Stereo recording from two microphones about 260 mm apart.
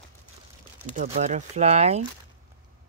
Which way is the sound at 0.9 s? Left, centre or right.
Right.